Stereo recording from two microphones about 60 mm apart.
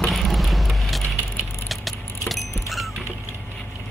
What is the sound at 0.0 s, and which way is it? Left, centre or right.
Vehicle, centre.